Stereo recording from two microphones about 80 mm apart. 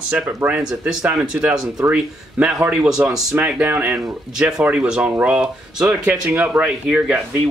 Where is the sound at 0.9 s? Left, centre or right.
Centre.